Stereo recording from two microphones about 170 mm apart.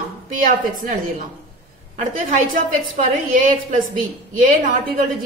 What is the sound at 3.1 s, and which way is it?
Speech, 50° right (ahead or behind).